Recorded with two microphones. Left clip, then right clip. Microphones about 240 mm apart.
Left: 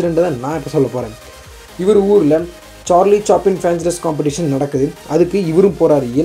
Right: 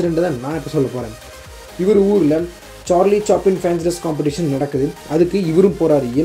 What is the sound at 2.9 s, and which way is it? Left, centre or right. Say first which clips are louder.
Speech: left 3 dB; centre.